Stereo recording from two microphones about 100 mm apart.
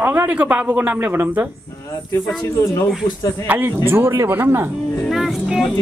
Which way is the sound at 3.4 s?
20° right (ahead or behind).